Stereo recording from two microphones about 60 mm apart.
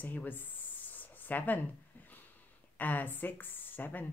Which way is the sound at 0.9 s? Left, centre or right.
Left.